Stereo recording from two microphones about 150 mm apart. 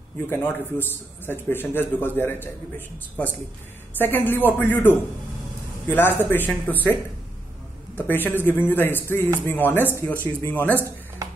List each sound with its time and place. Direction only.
0.3 s a man's voice: 15° left (ahead or behind)
4.0 s a man's voice: 15° left (ahead or behind)
8.1 s a man's voice: 15° left (ahead or behind)
11.2 s music: 25° right (ahead or behind)